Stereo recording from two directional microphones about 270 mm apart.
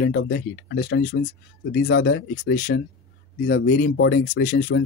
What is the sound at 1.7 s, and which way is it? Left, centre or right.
Speech, left.